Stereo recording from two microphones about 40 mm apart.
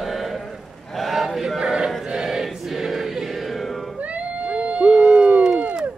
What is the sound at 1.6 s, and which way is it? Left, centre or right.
Chant, centre.